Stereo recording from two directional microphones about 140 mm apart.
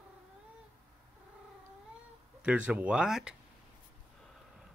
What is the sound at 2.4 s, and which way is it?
Speech, 10° right (ahead or behind).